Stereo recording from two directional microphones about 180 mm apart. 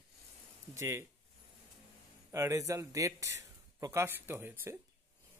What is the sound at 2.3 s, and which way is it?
Speech, 15° right (ahead or behind).